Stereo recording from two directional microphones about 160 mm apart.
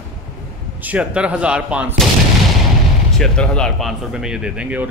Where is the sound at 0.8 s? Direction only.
10° right (ahead or behind).